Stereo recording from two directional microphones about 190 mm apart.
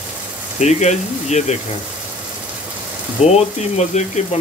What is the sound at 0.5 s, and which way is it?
Speech, 35° left (ahead or behind).